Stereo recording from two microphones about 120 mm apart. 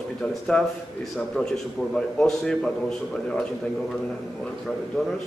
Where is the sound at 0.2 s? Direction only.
15° left (ahead or behind).